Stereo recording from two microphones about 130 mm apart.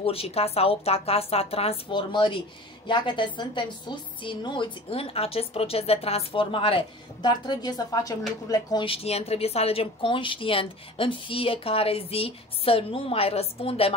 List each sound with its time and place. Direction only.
0.0 s a woman's voice: 45° left (ahead or behind); by 8.8 s 30° left (ahead or behind)
8.8 s speech: 50° left (ahead or behind)